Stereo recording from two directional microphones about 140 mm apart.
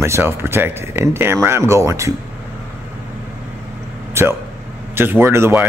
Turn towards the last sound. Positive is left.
turn(degrees=-20)  # may be behind; listen again after turning